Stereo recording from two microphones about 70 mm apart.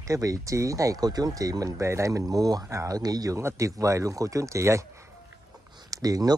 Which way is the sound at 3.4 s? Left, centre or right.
Right.